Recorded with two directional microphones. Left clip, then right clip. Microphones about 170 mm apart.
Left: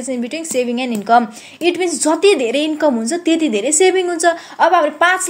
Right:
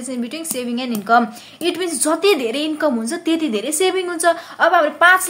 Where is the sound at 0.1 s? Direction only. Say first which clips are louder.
Left 6 dB; 20° left (ahead or behind).